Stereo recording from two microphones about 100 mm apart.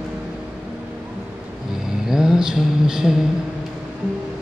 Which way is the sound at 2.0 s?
5° right (ahead or behind).